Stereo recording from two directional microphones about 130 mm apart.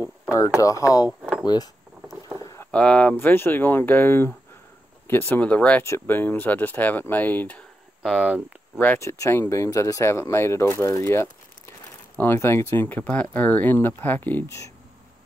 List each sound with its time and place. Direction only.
0.3 s speech: 25° left (ahead or behind)
2.4 s a sound: 25° left (ahead or behind)
2.7 s speech: 10° left (ahead or behind)
8.7 s speech: 15° left (ahead or behind)